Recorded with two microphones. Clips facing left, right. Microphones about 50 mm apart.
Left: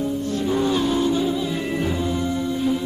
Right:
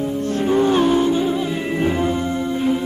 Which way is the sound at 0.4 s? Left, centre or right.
Right.